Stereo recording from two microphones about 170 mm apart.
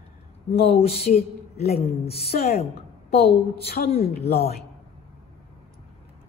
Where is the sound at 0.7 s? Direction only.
35° left (ahead or behind).